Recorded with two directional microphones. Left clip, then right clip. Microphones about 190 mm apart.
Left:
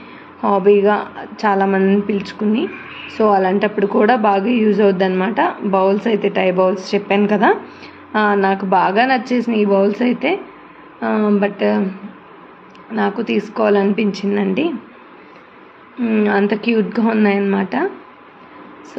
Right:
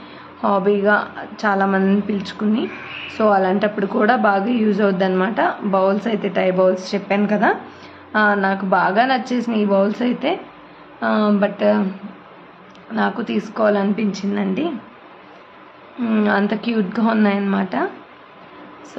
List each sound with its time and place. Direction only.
0.4 s a woman's voice: centre (ahead or behind)
13.2 s a woman's voice: 5° left (ahead or behind)
16.0 s a woman's voice: centre (ahead or behind)